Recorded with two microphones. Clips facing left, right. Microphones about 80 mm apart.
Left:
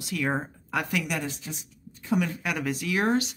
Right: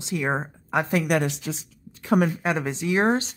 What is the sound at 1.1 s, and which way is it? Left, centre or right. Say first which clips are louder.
Speech: right 8 dB; right.